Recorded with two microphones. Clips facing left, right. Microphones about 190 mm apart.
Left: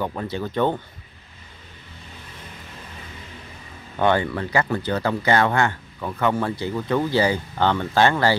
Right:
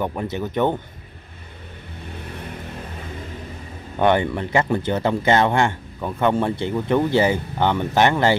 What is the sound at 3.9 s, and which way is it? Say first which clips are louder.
Speech: right 2 dB; 20° right (ahead or behind).